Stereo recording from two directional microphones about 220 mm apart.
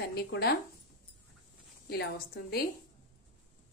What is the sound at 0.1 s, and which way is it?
Speech, 45° left (ahead or behind).